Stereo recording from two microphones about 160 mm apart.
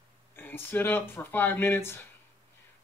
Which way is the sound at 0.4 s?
15° left (ahead or behind).